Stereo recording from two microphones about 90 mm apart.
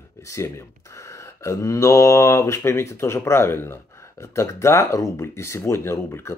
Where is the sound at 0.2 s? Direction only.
35° left (ahead or behind).